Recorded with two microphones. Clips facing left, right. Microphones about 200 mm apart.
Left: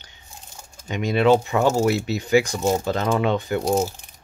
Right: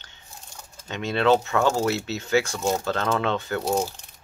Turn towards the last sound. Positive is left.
turn(degrees=0)  # may be behind; listen again after turning